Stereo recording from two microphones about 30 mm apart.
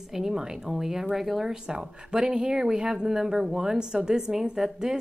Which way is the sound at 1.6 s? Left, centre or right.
Right.